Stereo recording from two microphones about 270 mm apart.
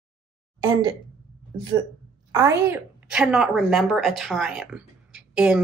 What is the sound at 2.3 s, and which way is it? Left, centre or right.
A woman's voice, centre.